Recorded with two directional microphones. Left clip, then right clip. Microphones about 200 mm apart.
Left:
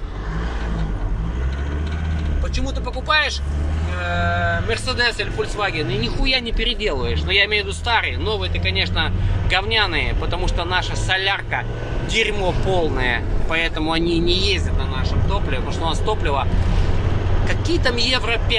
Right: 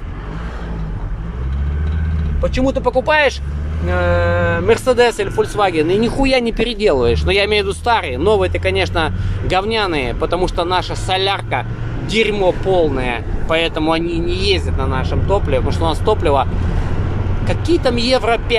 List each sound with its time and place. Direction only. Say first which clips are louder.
2.5 s speech: right 14 dB; 45° right (ahead or behind)
4.4 s a man's voice: right 7 dB; 40° right (ahead or behind); by 14.0 s 15° right (ahead or behind)
14.0 s speech: right 1 dB; centre (ahead or behind)
14.8 s speech: right 6 dB; 35° right (ahead or behind)
15.5 s a man's voice: right 6 dB; 20° right (ahead or behind)
17.5 s a man's voice: right 6 dB; 20° right (ahead or behind)